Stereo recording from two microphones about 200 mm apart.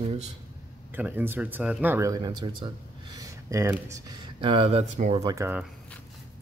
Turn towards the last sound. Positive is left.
turn(degrees=-15)  # may be behind; listen again after turning